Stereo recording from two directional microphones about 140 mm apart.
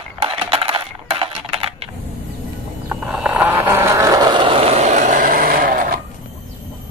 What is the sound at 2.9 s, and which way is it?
Vehicle, 5° right (ahead or behind).